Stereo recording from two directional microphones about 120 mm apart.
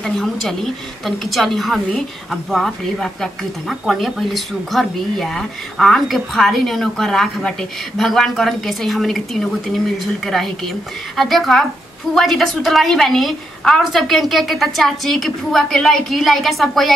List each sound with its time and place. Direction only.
0.0 s speech: 5° left (ahead or behind)